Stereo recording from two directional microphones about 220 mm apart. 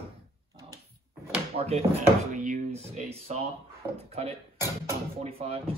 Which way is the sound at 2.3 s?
35° right (ahead or behind).